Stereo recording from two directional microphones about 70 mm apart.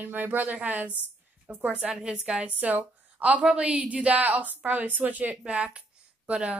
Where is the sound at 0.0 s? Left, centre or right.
Right.